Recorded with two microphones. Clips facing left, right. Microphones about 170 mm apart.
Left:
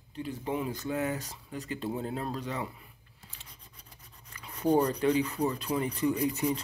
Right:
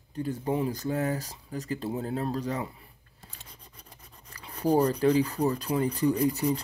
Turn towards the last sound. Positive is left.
turn(degrees=-35)  # may be behind; listen again after turning